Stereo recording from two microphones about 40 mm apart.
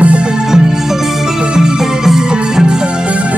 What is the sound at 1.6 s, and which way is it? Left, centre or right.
Music, centre.